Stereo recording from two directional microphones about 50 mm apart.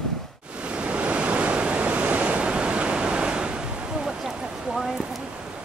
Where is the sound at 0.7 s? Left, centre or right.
Right.